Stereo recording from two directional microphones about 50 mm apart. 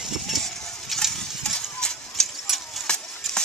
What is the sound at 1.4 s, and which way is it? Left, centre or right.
Horse, centre.